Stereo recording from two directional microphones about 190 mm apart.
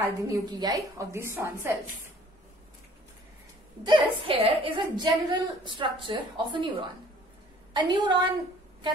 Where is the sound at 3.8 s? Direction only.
25° right (ahead or behind).